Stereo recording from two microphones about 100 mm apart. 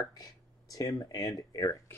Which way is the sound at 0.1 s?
40° left (ahead or behind).